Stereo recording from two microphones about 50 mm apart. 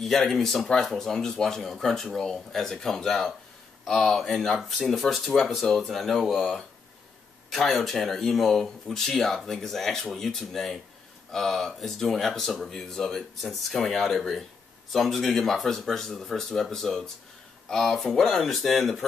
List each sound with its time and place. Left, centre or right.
0.0 s speech: centre